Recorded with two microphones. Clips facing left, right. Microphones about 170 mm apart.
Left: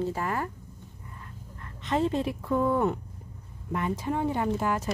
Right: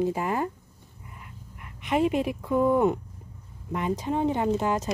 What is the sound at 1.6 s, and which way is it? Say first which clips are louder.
Speech: right 3 dB; 15° right (ahead or behind).